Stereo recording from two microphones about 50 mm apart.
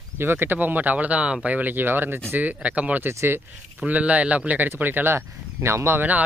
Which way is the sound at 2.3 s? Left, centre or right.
Right.